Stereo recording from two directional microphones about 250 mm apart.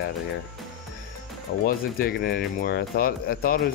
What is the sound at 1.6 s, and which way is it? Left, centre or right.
Speech, left.